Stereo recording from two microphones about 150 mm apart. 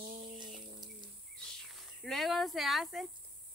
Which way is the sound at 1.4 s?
5° left (ahead or behind).